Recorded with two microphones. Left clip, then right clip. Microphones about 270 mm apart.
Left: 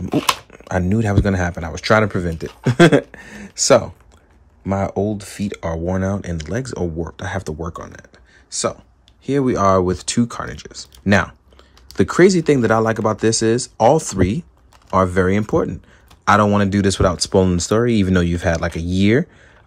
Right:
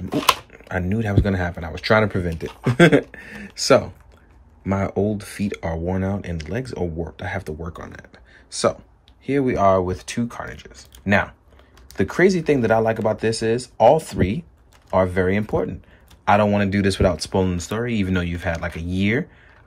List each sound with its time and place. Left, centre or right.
0.1 s speech: centre
9.2 s speech: centre